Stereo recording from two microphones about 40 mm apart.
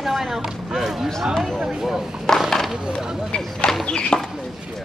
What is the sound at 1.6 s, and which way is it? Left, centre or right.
Speech, centre.